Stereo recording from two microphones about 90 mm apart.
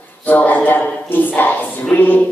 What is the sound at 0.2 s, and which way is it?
A man's voice, 20° left (ahead or behind).